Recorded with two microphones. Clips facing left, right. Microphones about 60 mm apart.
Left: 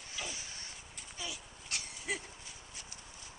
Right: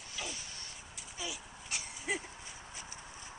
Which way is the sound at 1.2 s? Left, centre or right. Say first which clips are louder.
Right 2 dB; centre.